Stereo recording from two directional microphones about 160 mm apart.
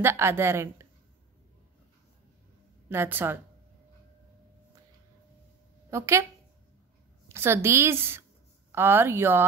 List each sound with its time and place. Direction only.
0.0 s a woman's voice: 15° right (ahead or behind)
2.9 s a woman's voice: 15° right (ahead or behind)
5.9 s a woman's voice: 15° right (ahead or behind)
7.2 s a woman's voice: 15° right (ahead or behind)